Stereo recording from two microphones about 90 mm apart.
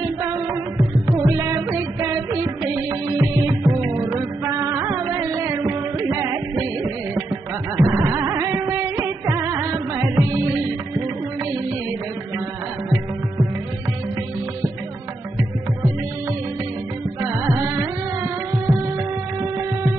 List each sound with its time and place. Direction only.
0.0 s music: 35° right (ahead or behind)
7.7 s music: 30° right (ahead or behind)
17.2 s music: 30° right (ahead or behind)